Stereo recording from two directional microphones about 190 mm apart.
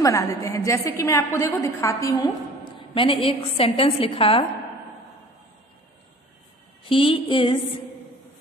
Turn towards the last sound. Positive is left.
turn(degrees=25)  # may be behind; listen again after turning